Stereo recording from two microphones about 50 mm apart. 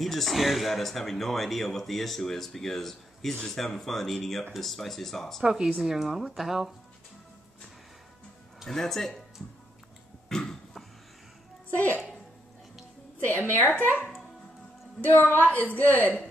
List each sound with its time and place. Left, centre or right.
0.0 s speech: centre
5.4 s speech: centre
8.6 s speech: centre
10.3 s cough: centre
11.7 s a woman's voice: left
13.6 s a woman's voice: left
15.0 s a woman's voice: left